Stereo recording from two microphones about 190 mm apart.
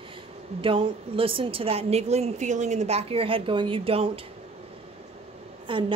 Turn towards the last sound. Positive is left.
turn(degrees=-25)  # may be behind; listen again after turning